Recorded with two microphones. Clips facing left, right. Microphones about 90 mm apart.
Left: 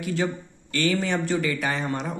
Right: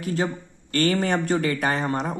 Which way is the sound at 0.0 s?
40° right (ahead or behind).